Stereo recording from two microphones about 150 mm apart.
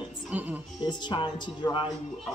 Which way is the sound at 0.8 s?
30° left (ahead or behind).